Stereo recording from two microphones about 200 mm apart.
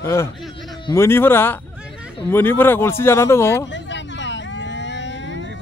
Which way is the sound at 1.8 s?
5° right (ahead or behind).